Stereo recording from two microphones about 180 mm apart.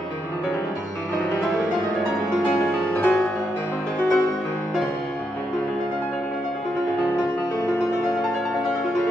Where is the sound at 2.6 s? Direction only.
10° left (ahead or behind).